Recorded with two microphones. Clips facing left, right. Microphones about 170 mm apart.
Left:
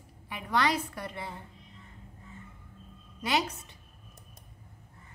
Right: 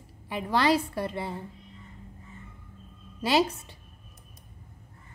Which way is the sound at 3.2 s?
30° right (ahead or behind).